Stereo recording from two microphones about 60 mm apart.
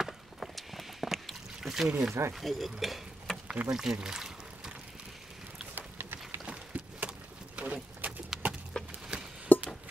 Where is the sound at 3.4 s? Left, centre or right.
Right.